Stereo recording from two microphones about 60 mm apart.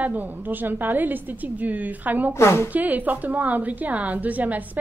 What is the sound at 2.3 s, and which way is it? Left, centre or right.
Gasp, left.